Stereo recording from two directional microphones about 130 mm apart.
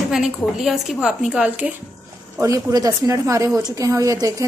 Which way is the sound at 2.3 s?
25° right (ahead or behind).